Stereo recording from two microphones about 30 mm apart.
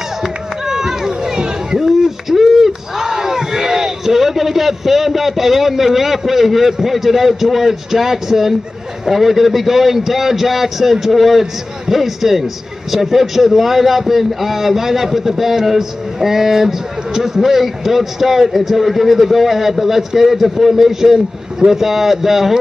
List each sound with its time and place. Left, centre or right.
0.2 s run: centre
1.3 s a sound: right
1.9 s a man's voice: centre